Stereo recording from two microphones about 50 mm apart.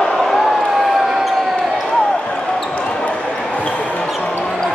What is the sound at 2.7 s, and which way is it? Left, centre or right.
Basketball bounce, left.